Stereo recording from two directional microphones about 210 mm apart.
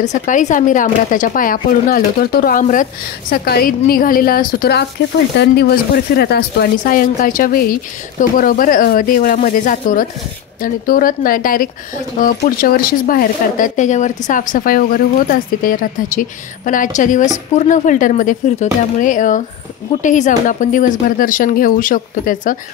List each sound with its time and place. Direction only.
0.0 s speech: 35° left (ahead or behind)